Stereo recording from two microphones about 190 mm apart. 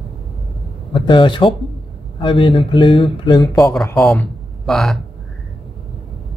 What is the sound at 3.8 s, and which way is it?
Speech, 5° left (ahead or behind).